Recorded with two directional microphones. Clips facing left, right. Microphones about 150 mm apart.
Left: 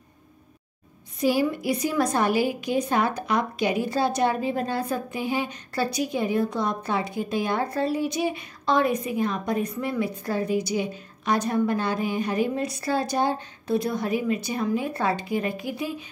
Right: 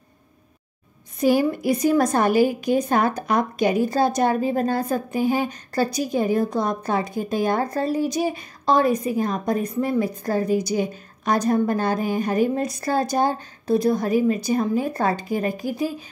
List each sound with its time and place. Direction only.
1.2 s a woman's voice: 50° right (ahead or behind)